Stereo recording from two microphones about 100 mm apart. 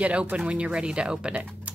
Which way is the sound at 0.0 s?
10° right (ahead or behind).